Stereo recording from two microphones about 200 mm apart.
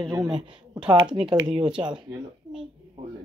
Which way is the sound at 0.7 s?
20° right (ahead or behind).